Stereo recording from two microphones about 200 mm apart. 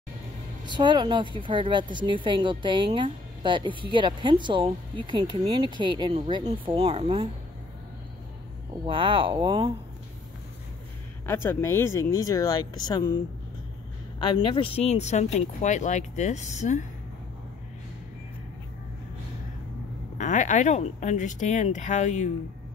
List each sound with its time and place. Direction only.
0.7 s speech: 25° right (ahead or behind)
8.8 s speech: 25° right (ahead or behind)
11.2 s speech: 10° left (ahead or behind)
14.2 s speech: 25° left (ahead or behind)
20.2 s speech: 40° left (ahead or behind)